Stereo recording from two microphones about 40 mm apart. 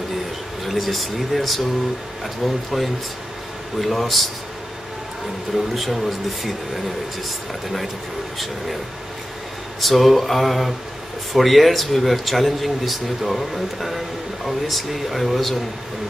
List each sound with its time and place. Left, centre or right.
0.7 s speech: centre
5.5 s speech: centre
9.8 s speech: centre